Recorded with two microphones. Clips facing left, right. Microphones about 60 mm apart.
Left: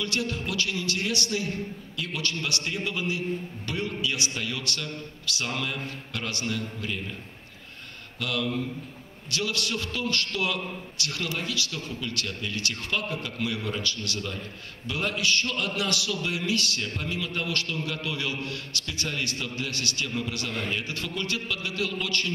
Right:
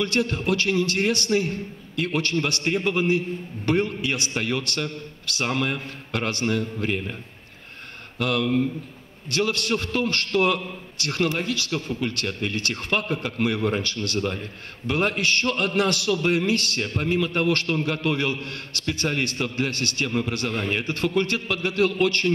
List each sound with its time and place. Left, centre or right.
0.0 s a man's voice: right
8.2 s a man's voice: right